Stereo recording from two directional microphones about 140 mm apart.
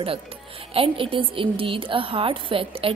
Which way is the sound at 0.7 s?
40° right (ahead or behind).